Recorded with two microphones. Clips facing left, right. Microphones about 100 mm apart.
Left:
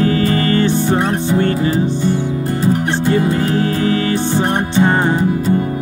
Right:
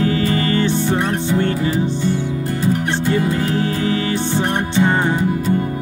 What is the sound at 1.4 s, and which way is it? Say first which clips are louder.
Music: left 3 dB; 45° left (ahead or behind).